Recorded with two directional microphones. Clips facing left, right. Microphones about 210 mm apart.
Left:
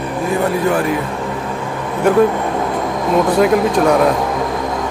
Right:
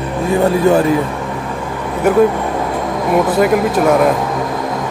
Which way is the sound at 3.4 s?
5° right (ahead or behind).